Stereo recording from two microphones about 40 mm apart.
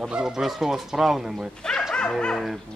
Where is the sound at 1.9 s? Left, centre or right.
Centre.